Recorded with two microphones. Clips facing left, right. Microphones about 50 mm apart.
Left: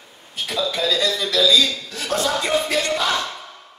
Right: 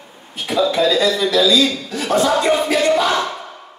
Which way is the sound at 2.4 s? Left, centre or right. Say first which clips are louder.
Right 5 dB; centre.